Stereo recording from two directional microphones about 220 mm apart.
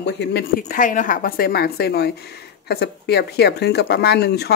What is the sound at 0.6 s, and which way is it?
Speech, 35° left (ahead or behind).